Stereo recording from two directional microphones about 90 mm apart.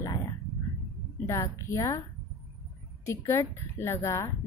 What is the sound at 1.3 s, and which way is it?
Speech, 30° left (ahead or behind).